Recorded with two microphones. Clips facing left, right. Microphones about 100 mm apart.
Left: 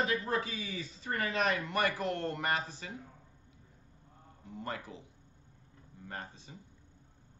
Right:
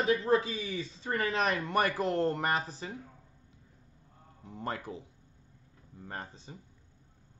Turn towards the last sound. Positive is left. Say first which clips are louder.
# right 2 dB
turn(degrees=-35)  # may be behind; listen again after turning